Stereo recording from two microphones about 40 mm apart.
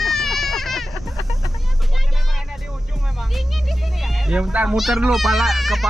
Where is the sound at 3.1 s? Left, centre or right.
Centre.